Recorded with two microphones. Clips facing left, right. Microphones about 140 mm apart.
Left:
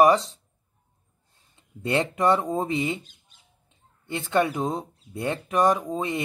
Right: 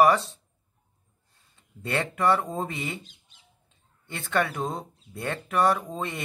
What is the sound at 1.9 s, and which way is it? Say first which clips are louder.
Speech: left 3 dB; 20° left (ahead or behind).